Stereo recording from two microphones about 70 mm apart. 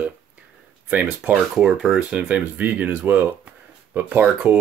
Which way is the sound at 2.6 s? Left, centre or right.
Right.